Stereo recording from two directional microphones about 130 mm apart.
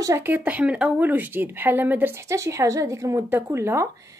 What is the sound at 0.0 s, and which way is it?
Speech, 20° right (ahead or behind).